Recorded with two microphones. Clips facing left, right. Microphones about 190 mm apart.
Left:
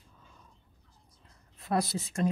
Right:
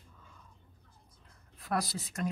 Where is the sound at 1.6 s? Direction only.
25° left (ahead or behind).